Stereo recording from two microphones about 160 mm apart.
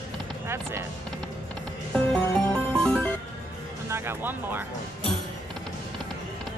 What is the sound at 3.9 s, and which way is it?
Speech, 15° right (ahead or behind).